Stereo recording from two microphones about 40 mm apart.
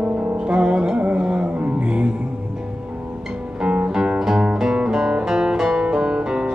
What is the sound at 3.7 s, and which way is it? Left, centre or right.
Music, right.